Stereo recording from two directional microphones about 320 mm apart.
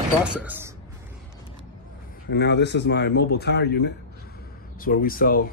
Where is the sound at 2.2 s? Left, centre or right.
Left.